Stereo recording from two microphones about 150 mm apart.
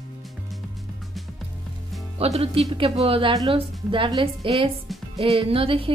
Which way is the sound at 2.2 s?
40° right (ahead or behind).